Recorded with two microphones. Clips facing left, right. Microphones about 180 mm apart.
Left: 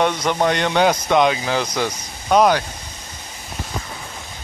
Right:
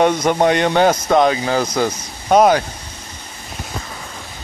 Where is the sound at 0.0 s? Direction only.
45° right (ahead or behind).